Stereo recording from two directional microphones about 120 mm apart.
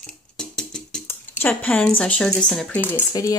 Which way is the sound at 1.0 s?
15° left (ahead or behind).